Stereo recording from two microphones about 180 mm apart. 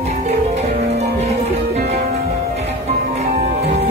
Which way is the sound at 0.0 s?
35° right (ahead or behind).